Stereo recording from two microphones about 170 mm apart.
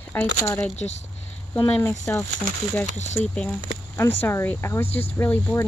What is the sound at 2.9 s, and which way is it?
Speech, 40° left (ahead or behind).